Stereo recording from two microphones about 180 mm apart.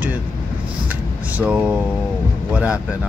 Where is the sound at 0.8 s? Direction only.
10° right (ahead or behind).